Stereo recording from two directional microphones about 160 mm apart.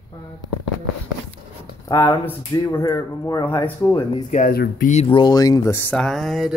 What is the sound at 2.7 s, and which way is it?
Speech, 15° left (ahead or behind).